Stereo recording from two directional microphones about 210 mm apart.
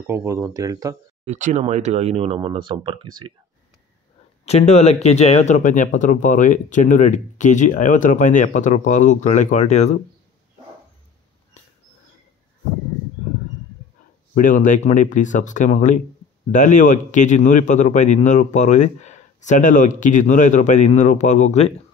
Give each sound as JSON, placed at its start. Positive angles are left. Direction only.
{"t": 0.0, "sound": "speech", "side_deg": -10}
{"t": 1.2, "sound": "speech", "side_deg": -35}
{"t": 4.5, "sound": "speech", "side_deg": 30}
{"t": 14.3, "sound": "speech", "side_deg": 40}